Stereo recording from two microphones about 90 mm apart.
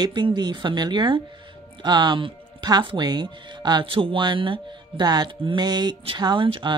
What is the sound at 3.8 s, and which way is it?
Speech, 75° right (ahead or behind).